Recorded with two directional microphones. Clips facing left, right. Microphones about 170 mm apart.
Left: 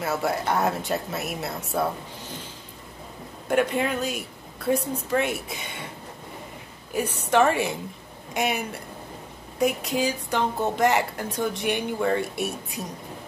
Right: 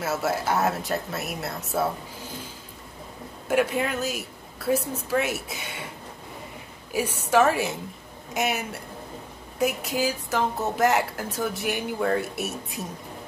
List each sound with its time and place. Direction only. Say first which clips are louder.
0.0 s speech: even; centre (ahead or behind)
3.4 s speech: left 1 dB; 5° right (ahead or behind)
6.9 s speech: even; 5° right (ahead or behind)